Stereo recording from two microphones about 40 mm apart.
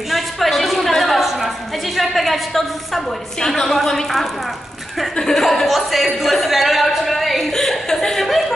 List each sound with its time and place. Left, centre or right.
0.1 s a sound: centre
2.0 s a woman's voice: centre
5.1 s speech: centre
5.4 s speech: centre